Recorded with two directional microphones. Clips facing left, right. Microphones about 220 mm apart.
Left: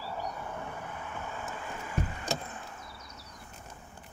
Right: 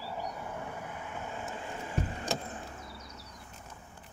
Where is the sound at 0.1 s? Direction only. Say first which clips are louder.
Left 1 dB; 10° right (ahead or behind); by 2.2 s 30° right (ahead or behind).